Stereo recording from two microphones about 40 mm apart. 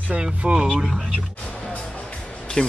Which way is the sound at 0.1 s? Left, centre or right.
Right.